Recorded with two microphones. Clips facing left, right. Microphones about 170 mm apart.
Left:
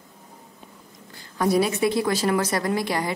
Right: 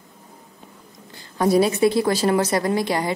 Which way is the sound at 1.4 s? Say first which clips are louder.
Right 4 dB; 30° right (ahead or behind).